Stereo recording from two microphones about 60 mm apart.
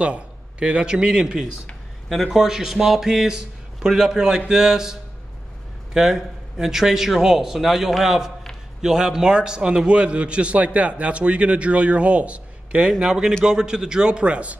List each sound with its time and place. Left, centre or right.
0.0 s a man's voice: centre
5.9 s a man's voice: centre